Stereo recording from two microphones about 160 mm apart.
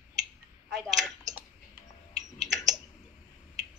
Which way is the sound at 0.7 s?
Centre (ahead or behind).